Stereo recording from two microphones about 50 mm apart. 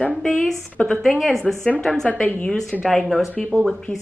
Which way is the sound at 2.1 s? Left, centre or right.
Left.